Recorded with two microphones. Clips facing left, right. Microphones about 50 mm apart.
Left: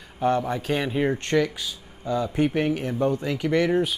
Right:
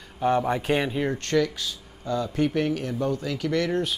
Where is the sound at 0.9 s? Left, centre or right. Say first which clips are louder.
Left 2 dB; centre.